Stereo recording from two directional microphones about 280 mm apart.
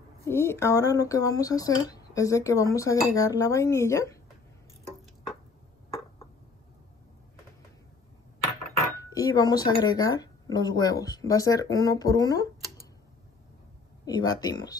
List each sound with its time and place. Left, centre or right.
0.2 s speech: centre
8.8 s speech: centre
14.0 s speech: centre